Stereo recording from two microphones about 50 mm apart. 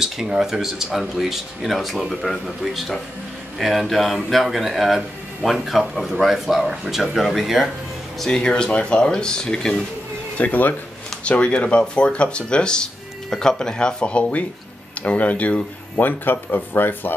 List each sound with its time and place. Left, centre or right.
0.0 s speech: centre
8.3 s speech: centre
10.3 s speech: left
11.2 s speech: left